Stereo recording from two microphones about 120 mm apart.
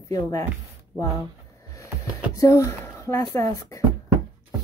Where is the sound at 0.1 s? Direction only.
30° left (ahead or behind).